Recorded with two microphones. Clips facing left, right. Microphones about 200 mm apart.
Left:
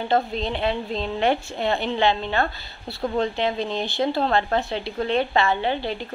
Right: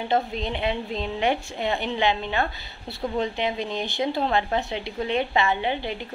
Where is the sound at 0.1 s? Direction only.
15° right (ahead or behind).